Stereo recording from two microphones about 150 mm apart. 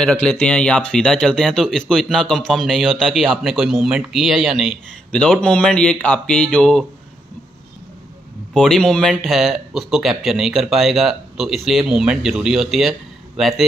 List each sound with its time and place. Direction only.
0.0 s speech: 5° left (ahead or behind)
8.5 s speech: 5° left (ahead or behind)